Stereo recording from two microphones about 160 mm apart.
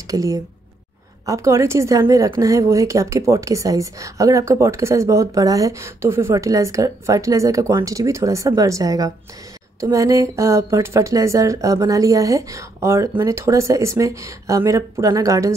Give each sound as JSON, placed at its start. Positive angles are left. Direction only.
{"t": 0.1, "sound": "a woman's voice", "side_deg": -20}